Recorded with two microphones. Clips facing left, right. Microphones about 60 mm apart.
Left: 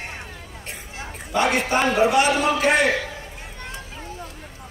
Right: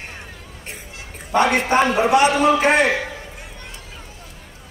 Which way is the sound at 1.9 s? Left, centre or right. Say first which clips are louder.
Right 2 dB; right.